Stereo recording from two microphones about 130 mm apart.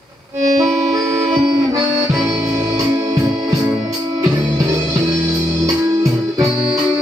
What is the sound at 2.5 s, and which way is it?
Music, 25° right (ahead or behind).